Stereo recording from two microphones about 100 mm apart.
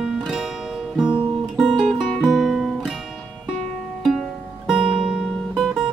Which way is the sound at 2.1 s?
5° left (ahead or behind).